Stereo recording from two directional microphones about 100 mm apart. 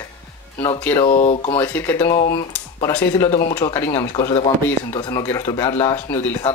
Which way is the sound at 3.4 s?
35° left (ahead or behind).